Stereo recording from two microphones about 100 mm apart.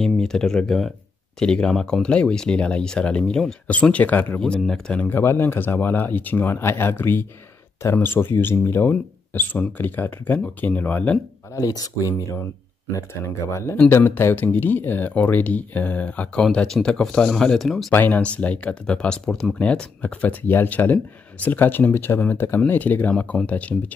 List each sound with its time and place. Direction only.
0.0 s speech: 5° left (ahead or behind)
4.4 s speech: 5° left (ahead or behind)
5.0 s speech: 25° left (ahead or behind)
11.5 s speech: 35° left (ahead or behind); by 16.4 s 15° left (ahead or behind)
16.4 s speech: 5° left (ahead or behind)
17.9 s speech: 15° left (ahead or behind)